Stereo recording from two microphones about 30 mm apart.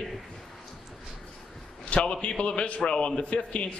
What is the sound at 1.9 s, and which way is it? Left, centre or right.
Speech, left.